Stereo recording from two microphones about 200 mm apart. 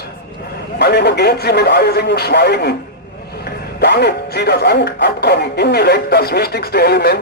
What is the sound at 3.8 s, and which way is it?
Speech, 55° left (ahead or behind).